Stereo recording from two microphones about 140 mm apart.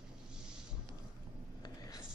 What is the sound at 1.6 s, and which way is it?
Writing, 25° left (ahead or behind).